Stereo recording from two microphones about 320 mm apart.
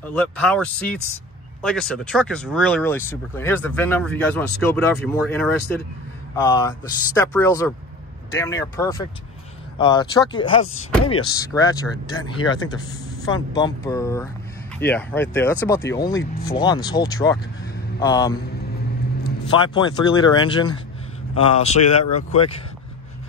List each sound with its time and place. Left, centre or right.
0.0 s speech: centre
19.5 s speech: centre